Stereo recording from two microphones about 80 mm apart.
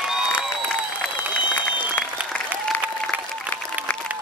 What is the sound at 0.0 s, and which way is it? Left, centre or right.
Applause, centre.